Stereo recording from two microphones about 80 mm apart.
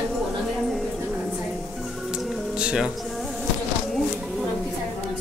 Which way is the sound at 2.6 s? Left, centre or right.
Centre.